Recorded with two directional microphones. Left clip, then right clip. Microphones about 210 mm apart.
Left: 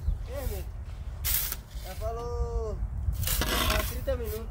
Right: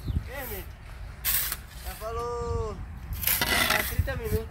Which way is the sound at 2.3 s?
40° left (ahead or behind).